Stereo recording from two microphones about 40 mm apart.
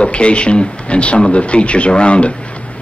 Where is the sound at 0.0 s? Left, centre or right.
Left.